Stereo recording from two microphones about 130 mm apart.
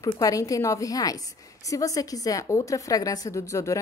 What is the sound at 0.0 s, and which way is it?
A woman's voice, 25° left (ahead or behind).